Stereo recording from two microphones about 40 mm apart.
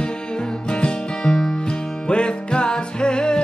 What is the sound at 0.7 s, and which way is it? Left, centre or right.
Music, left.